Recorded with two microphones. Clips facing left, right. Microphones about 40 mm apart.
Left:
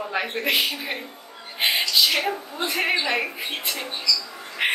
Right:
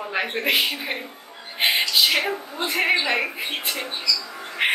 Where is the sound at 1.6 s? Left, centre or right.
Centre.